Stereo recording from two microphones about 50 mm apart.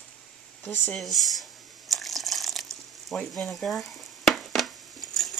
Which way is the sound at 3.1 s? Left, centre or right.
Left.